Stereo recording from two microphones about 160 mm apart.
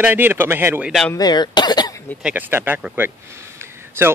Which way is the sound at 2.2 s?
10° right (ahead or behind).